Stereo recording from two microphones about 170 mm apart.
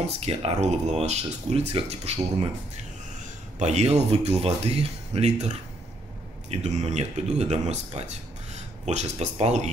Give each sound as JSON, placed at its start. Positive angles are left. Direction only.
{"t": 0.2, "sound": "speech", "side_deg": -35}
{"t": 3.5, "sound": "speech", "side_deg": -40}
{"t": 6.5, "sound": "speech", "side_deg": -40}